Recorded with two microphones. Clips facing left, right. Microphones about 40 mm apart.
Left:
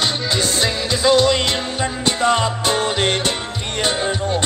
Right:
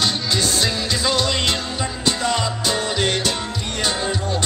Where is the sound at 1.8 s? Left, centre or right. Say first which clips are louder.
Left 6 dB; left.